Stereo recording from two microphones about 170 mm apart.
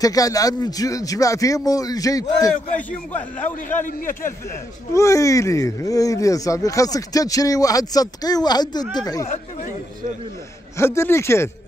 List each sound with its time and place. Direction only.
0.0 s speech: 20° left (ahead or behind)
3.1 s speech: 10° left (ahead or behind)
3.8 s a man's voice: 55° left (ahead or behind)
4.9 s speech: 20° left (ahead or behind)
10.8 s speech: 15° left (ahead or behind)